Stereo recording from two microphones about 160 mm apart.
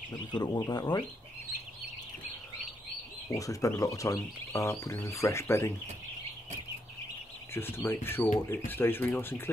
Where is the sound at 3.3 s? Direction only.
20° left (ahead or behind).